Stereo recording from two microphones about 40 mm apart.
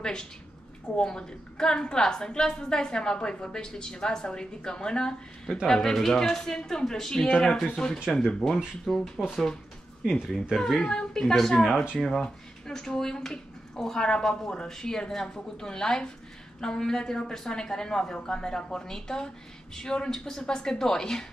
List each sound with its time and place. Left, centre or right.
0.0 s a woman's voice: centre
7.2 s speech: left
7.6 s a woman's voice: centre
8.4 s speech: centre
8.8 s a woman's voice: centre
10.8 s a woman's voice: centre